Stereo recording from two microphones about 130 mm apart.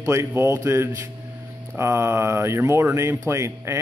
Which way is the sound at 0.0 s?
20° right (ahead or behind).